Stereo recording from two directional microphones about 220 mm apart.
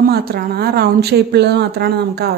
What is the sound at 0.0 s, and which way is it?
Speech, 45° right (ahead or behind).